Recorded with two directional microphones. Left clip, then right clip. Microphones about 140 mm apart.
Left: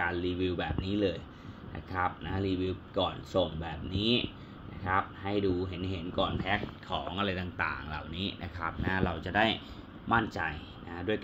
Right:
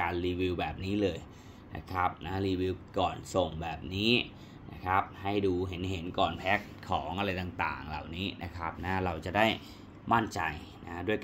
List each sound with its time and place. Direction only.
0.0 s speech: 20° right (ahead or behind)
6.9 s speech: 20° right (ahead or behind)